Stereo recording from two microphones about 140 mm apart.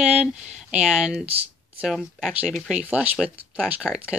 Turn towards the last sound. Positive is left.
turn(degrees=-5)  # may be behind; listen again after turning